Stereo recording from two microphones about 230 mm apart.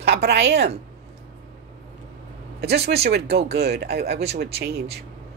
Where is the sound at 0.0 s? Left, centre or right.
Right.